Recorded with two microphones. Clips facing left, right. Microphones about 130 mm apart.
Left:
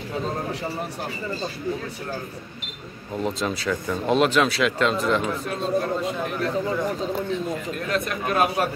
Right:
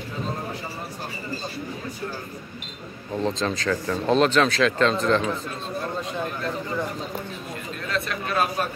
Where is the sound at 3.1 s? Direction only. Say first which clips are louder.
Right 1 dB; 5° left (ahead or behind).